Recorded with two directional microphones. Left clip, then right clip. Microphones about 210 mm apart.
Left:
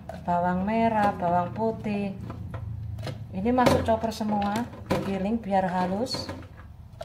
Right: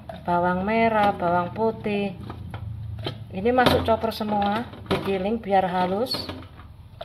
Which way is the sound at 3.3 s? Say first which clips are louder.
Right 3 dB; 25° right (ahead or behind).